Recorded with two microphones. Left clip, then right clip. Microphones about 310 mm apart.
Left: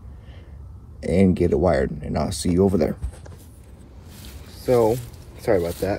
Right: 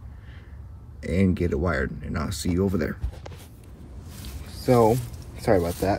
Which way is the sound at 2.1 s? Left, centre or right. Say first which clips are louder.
Left 6 dB; centre.